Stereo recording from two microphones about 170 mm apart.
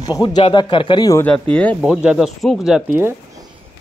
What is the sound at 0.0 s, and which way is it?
Speech, 25° left (ahead or behind).